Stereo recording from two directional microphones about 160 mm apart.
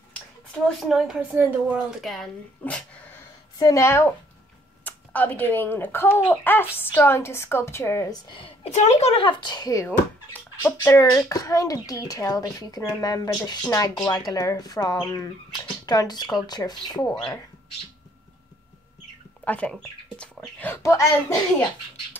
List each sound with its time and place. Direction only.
0.1 s a woman's voice: 5° left (ahead or behind)
2.6 s dog: 10° left (ahead or behind)
3.5 s speech: 20° left (ahead or behind)
8.3 s a child's voice: 35° left (ahead or behind)
17.0 s speech: 10° left (ahead or behind)
19.4 s speech: 10° left (ahead or behind)